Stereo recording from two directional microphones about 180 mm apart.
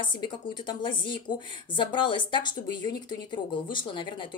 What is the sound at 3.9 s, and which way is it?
Speech, 25° left (ahead or behind).